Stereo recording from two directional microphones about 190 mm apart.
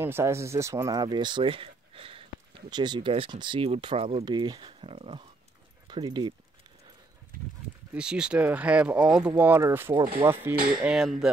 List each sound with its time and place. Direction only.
0.0 s speech: 15° right (ahead or behind)
7.9 s speech: 5° right (ahead or behind)